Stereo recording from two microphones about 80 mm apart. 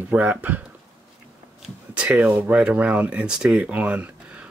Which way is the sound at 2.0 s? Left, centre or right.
Centre.